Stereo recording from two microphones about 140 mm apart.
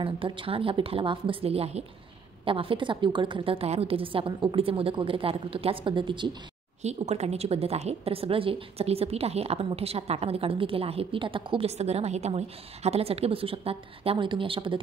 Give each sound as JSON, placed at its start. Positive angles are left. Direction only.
{"t": 0.0, "sound": "a woman's voice", "side_deg": -40}
{"t": 6.8, "sound": "a woman's voice", "side_deg": -50}